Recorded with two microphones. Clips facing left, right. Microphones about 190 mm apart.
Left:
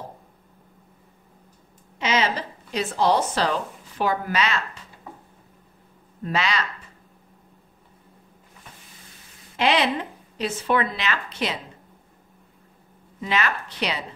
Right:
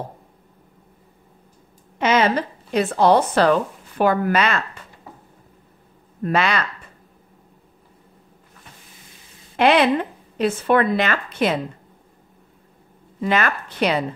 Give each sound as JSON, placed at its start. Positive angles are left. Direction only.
{"t": 2.0, "sound": "speech", "side_deg": -55}
{"t": 6.2, "sound": "speech", "side_deg": -55}
{"t": 9.6, "sound": "a woman's voice", "side_deg": -55}
{"t": 13.2, "sound": "a woman's voice", "side_deg": -50}